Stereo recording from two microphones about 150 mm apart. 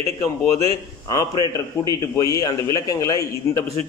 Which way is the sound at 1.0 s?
25° left (ahead or behind).